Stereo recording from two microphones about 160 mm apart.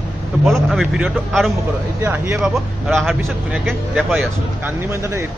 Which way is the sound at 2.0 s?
15° right (ahead or behind).